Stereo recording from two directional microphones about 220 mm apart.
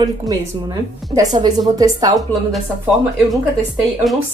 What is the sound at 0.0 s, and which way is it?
A woman's voice, 15° right (ahead or behind).